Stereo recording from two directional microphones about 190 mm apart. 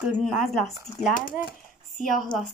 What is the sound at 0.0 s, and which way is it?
Speech, 5° right (ahead or behind).